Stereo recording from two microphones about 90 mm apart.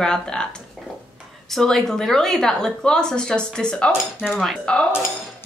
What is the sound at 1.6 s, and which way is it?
A woman's voice, 5° left (ahead or behind).